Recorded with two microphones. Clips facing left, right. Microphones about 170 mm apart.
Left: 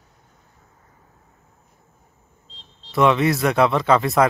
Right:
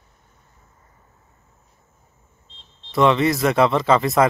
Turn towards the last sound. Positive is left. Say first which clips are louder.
# even
turn(degrees=0)  # may be behind; listen again after turning